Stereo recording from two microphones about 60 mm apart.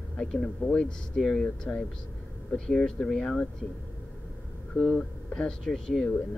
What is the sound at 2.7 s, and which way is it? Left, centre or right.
Speech, centre.